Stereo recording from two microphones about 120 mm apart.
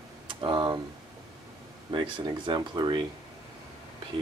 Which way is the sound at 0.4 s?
40° right (ahead or behind).